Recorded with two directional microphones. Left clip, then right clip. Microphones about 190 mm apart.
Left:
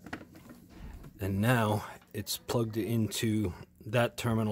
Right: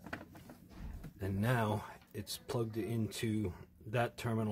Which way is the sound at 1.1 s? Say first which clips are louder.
Left 6 dB; 30° left (ahead or behind).